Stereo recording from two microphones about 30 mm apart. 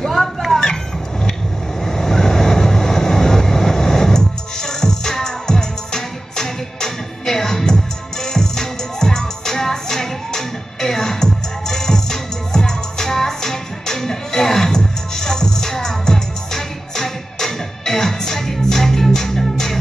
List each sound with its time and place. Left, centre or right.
0.0 s a sound: centre
1.9 s vehicle: centre
17.5 s music: centre